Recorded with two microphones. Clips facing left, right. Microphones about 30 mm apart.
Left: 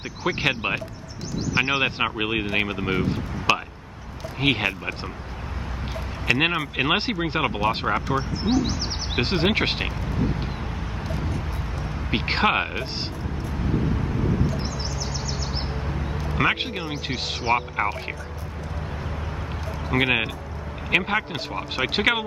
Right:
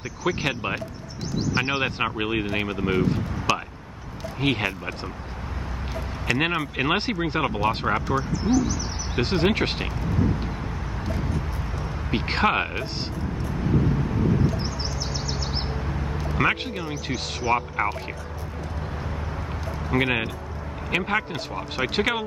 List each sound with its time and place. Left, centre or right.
0.4 s speech: left
1.6 s speech: centre
6.2 s speech: centre
8.2 s speech: left
9.1 s speech: left
12.1 s speech: centre
13.7 s vehicle: centre
14.5 s a sound: right
15.6 s a sound: centre
16.5 s speech: left
16.8 s speech: left
19.9 s speech: centre